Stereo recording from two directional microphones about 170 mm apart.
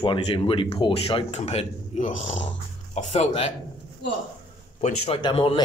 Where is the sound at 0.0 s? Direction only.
30° left (ahead or behind).